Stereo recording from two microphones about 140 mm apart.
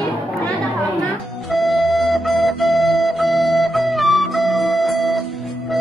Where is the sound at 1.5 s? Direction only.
Centre (ahead or behind).